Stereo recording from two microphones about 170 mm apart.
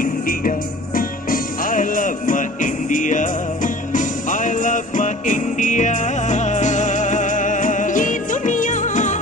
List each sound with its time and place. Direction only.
0.0 s music: 55° left (ahead or behind)